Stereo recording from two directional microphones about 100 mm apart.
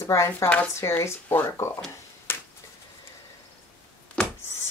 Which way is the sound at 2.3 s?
25° left (ahead or behind).